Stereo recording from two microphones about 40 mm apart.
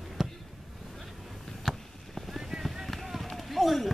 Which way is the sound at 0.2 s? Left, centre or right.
Centre.